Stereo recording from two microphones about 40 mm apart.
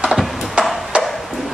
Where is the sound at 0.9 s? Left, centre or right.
Right.